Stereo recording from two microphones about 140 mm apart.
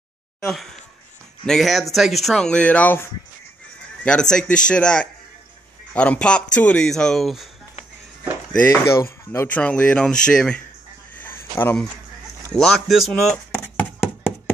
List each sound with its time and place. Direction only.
0.5 s speech: centre (ahead or behind)
8.5 s speech: 20° left (ahead or behind)
11.1 s a sound: 15° left (ahead or behind)
12.5 s speech: 5° left (ahead or behind)